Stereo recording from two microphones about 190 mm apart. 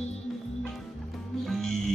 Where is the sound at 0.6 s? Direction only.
Centre (ahead or behind).